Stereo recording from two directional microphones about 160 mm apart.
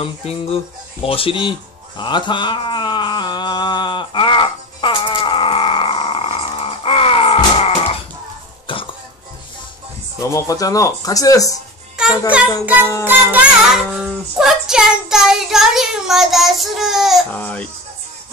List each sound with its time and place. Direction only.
0.0 s speech: 35° left (ahead or behind)
2.0 s a sound: 30° left (ahead or behind)
8.7 s cough: 35° left (ahead or behind)
10.3 s speech: 20° left (ahead or behind)
12.0 s a sound: 5° right (ahead or behind)
13.0 s child singing: 10° right (ahead or behind)
17.3 s speech: 10° left (ahead or behind)